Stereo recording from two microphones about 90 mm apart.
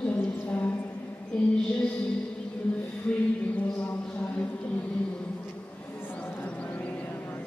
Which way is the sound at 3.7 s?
20° left (ahead or behind).